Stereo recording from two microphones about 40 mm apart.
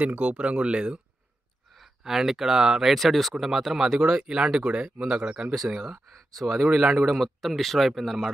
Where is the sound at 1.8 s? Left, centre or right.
Centre.